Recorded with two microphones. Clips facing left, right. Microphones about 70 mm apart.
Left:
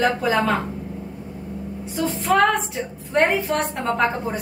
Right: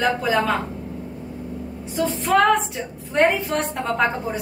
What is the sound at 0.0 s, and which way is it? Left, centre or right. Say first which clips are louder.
Speech: left 1 dB; centre.